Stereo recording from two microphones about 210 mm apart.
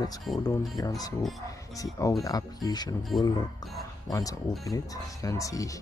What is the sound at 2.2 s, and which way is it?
Speech, 15° left (ahead or behind).